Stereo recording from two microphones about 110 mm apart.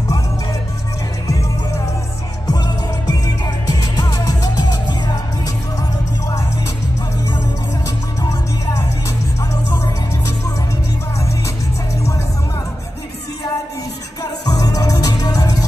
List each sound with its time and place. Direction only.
2.4 s music: 35° left (ahead or behind)
8.2 s music: 30° left (ahead or behind)
14.4 s music: 35° left (ahead or behind)